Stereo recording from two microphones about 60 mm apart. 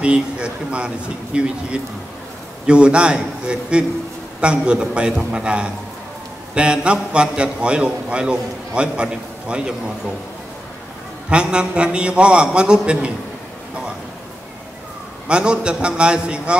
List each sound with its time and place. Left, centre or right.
0.0 s a man's voice: centre
11.2 s a man's voice: centre
15.2 s a man's voice: centre